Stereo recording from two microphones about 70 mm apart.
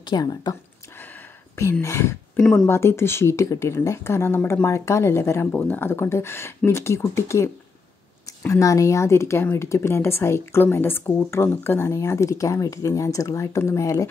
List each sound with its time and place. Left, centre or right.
0.0 s speech: left
1.6 s speech: left
5.5 s speech: left
8.5 s speech: left